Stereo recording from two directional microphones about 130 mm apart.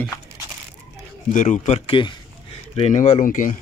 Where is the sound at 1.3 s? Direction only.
70° left (ahead or behind).